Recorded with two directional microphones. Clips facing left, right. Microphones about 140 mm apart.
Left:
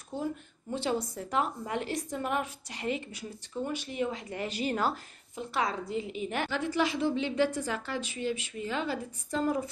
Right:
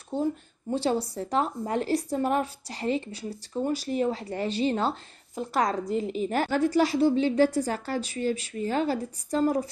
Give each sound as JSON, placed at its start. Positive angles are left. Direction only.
{"t": 0.1, "sound": "speech", "side_deg": -30}
{"t": 5.5, "sound": "speech", "side_deg": -40}